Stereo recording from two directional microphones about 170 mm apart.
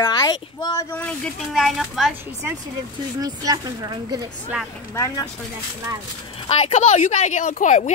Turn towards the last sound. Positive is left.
turn(degrees=45)  # may be behind; listen again after turning